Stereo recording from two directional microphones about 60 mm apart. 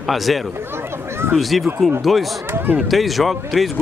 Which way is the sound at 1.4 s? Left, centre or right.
Centre.